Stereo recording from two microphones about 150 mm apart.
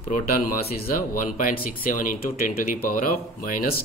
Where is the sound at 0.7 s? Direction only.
75° left (ahead or behind).